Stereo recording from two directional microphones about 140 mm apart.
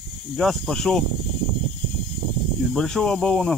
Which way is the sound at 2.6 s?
5° left (ahead or behind).